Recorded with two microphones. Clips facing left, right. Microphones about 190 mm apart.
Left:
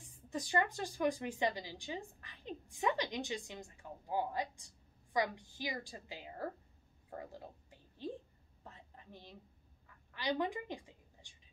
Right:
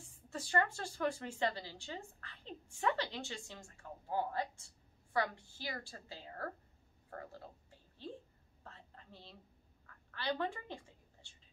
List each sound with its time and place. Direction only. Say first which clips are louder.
0.0 s speech: left 4 dB; 15° left (ahead or behind)
7.1 s frog: left 2 dB; 15° left (ahead or behind)
8.6 s whispering: left 1 dB; 15° left (ahead or behind)
9.8 s a sound: left 1 dB; 15° left (ahead or behind)